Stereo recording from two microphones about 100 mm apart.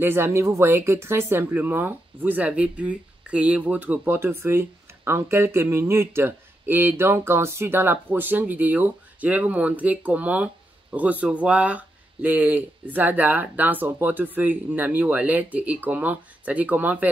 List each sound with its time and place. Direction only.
0.0 s speech: 25° right (ahead or behind)